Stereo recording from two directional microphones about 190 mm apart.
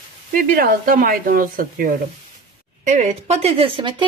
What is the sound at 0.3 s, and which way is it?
A woman's voice, 45° right (ahead or behind).